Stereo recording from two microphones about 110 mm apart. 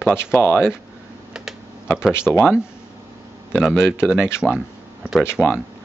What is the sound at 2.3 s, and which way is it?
Speech, 10° right (ahead or behind).